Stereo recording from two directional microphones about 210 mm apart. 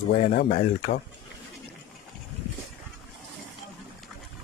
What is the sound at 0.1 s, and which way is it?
Speech, 40° left (ahead or behind).